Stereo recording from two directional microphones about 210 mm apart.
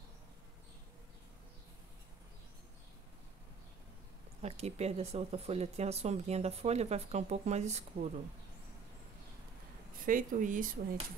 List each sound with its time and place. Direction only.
4.4 s speech: 30° right (ahead or behind)
10.0 s speech: 40° right (ahead or behind)